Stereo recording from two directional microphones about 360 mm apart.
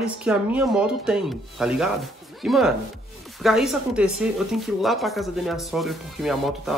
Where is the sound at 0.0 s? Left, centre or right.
Centre.